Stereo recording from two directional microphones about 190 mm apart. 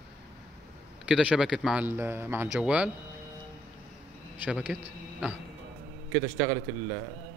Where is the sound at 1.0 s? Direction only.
5° right (ahead or behind).